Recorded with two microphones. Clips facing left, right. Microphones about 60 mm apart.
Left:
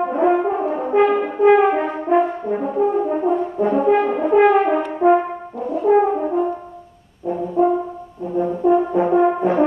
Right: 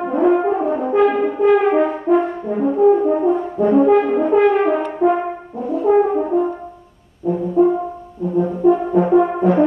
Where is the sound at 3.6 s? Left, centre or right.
Centre.